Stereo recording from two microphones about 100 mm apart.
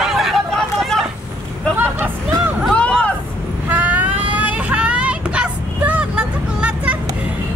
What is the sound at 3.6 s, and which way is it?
Vehicle, 15° right (ahead or behind).